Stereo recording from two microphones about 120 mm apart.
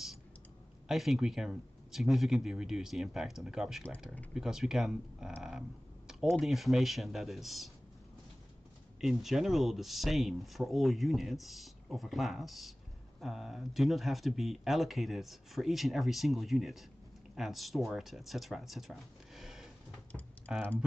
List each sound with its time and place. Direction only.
0.8 s speech: centre (ahead or behind)
6.4 s speech: centre (ahead or behind)
9.0 s speech: 5° right (ahead or behind)
20.4 s speech: 15° right (ahead or behind)